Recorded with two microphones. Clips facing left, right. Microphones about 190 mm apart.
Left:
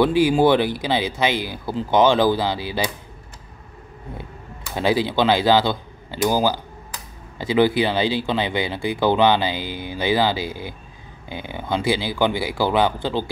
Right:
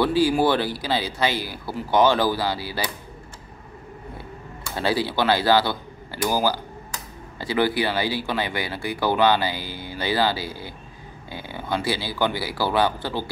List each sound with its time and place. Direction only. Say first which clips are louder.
0.0 s speech: left 3 dB; 20° left (ahead or behind)
4.7 s speech: left 4 dB; 15° left (ahead or behind)